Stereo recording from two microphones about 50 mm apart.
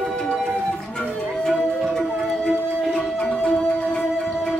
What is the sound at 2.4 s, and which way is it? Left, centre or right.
Music, centre.